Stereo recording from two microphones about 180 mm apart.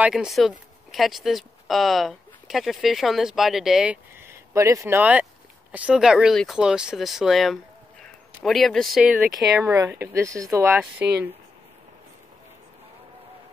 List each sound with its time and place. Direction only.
0.0 s speech: 5° right (ahead or behind)
9.7 s speech: 15° right (ahead or behind)